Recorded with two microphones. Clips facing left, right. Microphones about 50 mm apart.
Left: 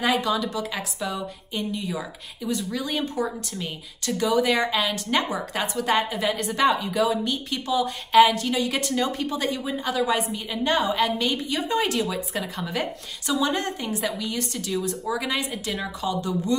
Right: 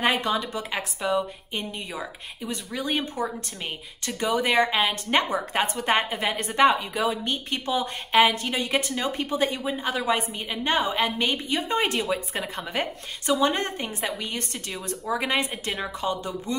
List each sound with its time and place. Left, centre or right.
0.0 s a woman's voice: right